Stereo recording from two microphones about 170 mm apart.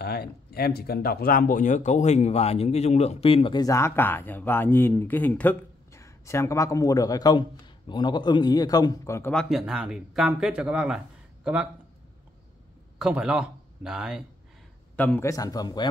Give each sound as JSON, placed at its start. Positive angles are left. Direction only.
{"t": 0.0, "sound": "speech", "side_deg": 70}
{"t": 9.3, "sound": "speech", "side_deg": 0}
{"t": 13.0, "sound": "speech", "side_deg": -5}
{"t": 15.0, "sound": "speech", "side_deg": 10}